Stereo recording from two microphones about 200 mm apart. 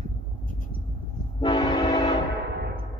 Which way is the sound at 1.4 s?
25° left (ahead or behind).